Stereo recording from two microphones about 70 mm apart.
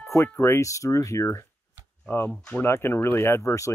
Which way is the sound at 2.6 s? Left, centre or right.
Left.